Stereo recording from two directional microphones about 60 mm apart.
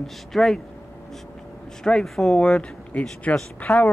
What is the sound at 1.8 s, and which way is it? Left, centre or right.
Speech, centre.